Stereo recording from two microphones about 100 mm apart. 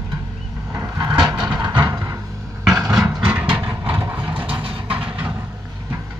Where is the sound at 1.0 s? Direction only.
45° right (ahead or behind).